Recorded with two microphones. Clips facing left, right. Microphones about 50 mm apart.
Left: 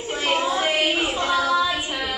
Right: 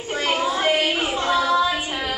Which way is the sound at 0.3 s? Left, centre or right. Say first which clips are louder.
Right 1 dB; centre.